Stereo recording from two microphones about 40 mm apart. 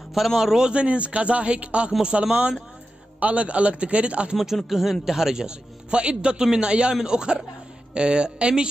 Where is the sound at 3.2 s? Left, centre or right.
Right.